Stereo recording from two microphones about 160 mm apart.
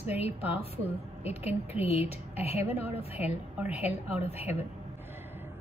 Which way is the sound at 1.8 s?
40° left (ahead or behind).